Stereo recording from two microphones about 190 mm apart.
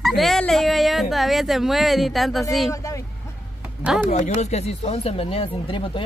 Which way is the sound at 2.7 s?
15° left (ahead or behind).